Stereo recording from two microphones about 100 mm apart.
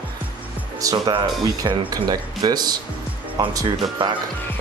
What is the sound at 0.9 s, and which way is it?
Speech, 50° right (ahead or behind).